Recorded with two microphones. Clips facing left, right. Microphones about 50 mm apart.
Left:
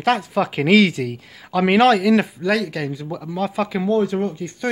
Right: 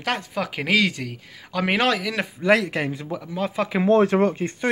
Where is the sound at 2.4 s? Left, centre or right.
Right.